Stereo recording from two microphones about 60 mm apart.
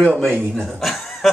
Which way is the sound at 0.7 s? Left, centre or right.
Centre.